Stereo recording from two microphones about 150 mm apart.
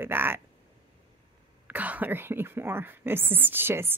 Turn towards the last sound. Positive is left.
turn(degrees=-15)  # may be behind; listen again after turning